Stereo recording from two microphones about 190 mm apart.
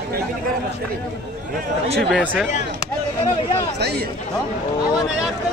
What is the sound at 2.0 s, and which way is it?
Speech, centre (ahead or behind).